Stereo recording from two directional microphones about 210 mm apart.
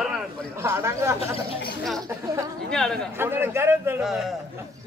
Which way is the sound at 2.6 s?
5° left (ahead or behind).